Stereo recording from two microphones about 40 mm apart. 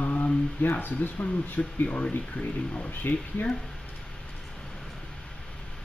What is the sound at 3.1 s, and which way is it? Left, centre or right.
Speech, left.